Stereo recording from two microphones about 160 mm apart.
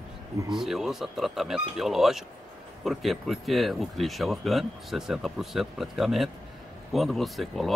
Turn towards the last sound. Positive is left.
turn(degrees=0)  # may be behind; listen again after turning